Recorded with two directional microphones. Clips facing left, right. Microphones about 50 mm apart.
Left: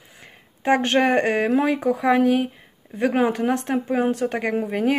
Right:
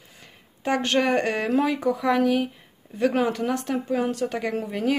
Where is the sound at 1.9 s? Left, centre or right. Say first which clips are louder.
Left 4 dB; left.